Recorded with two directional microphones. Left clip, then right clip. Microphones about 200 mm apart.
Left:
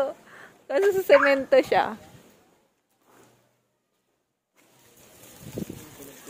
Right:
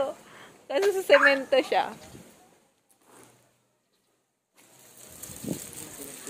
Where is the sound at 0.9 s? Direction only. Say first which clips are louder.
Left 1 dB; 45° left (ahead or behind).